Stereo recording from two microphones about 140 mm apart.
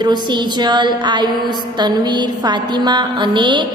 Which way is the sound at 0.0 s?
30° right (ahead or behind).